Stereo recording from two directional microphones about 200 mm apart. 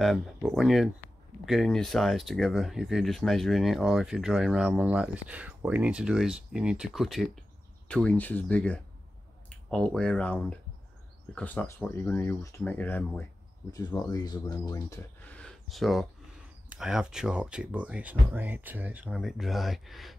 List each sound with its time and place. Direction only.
0.0 s speech: centre (ahead or behind)
13.7 s speech: 20° left (ahead or behind); by 20.2 s centre (ahead or behind)